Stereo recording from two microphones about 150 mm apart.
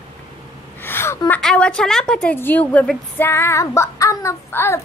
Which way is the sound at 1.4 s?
5° left (ahead or behind).